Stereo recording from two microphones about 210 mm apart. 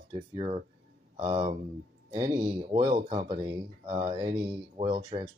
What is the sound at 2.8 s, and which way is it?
Speech, 40° right (ahead or behind).